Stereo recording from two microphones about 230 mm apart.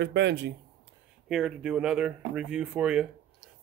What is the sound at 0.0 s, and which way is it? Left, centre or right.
Speech, right.